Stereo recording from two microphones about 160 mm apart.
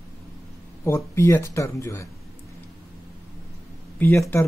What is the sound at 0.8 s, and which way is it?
Speech, 15° left (ahead or behind).